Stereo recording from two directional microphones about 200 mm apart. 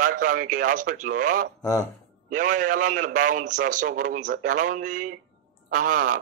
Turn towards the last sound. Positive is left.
turn(degrees=-40)  # may be behind; listen again after turning